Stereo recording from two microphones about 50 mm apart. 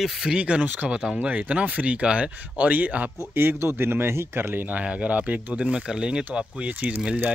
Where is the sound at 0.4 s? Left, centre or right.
Right.